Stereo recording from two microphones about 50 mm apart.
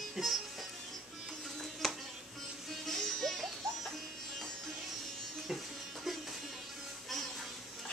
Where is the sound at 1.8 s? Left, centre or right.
Centre.